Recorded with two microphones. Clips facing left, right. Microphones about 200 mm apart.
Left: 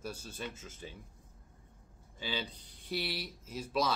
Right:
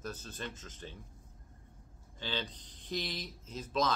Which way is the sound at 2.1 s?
10° left (ahead or behind).